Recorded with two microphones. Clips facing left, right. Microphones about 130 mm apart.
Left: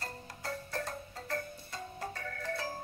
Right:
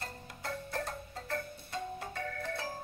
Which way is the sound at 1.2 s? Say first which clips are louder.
Even; 40° left (ahead or behind).